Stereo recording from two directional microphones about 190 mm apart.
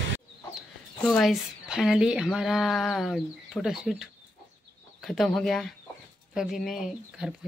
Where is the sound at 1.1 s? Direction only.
Centre (ahead or behind).